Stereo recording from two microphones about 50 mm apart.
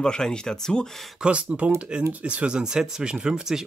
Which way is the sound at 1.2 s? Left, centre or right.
Right.